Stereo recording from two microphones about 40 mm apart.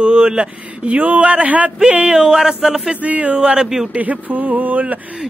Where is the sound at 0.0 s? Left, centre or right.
Right.